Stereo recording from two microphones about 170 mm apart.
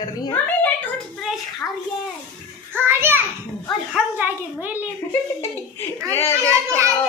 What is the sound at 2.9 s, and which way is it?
Speech, 15° right (ahead or behind).